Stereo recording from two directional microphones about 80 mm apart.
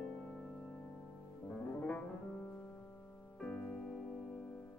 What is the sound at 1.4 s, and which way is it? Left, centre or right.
Music, centre.